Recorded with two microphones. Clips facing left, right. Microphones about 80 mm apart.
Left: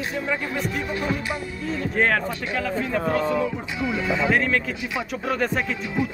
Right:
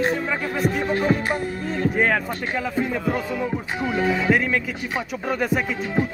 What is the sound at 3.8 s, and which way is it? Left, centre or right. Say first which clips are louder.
Speech: right 3 dB; right.